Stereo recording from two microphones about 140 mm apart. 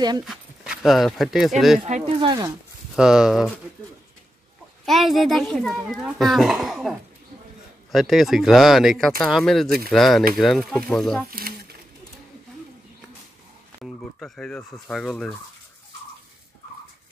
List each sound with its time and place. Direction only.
0.2 s speech: centre (ahead or behind)
1.9 s speech: 55° right (ahead or behind)
2.1 s speech: 30° right (ahead or behind)
3.0 s a child's voice: 5° right (ahead or behind)
4.8 s a child's voice: centre (ahead or behind)
11.2 s speech: 90° right
13.7 s fowl: 5° left (ahead or behind)